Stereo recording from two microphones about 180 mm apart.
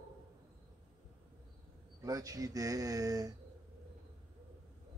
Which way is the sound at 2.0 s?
20° right (ahead or behind).